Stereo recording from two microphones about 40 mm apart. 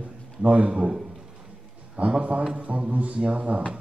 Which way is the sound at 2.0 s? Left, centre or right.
Right.